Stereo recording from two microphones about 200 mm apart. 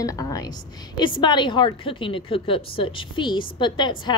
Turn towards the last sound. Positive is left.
turn(degrees=25)  # may be behind; listen again after turning